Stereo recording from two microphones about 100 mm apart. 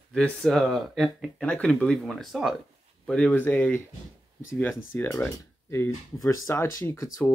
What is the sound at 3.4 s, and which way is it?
Speech, 20° left (ahead or behind).